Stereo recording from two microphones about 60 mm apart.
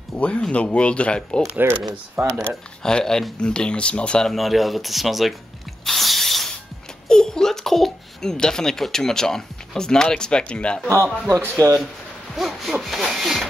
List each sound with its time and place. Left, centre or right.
0.1 s speech: centre
1.6 s speech: right
2.2 s speech: centre
2.8 s speech: centre
4.3 s speech: centre
5.9 s spray: centre
7.1 s a child's voice: centre
11.5 s speech: right
12.4 s speech: centre